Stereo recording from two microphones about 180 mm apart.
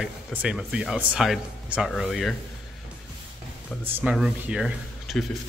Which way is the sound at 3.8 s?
10° right (ahead or behind).